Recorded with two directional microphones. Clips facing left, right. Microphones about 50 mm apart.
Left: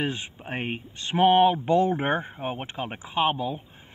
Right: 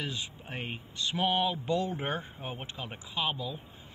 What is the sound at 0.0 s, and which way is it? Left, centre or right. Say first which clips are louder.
Speech: left 8 dB; left.